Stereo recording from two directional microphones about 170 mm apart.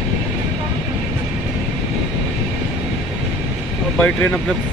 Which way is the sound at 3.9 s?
10° left (ahead or behind).